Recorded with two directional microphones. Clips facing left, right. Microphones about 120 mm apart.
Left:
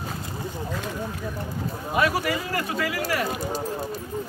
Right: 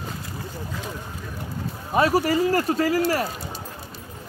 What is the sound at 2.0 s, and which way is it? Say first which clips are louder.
Speech: right 5 dB; 35° right (ahead or behind).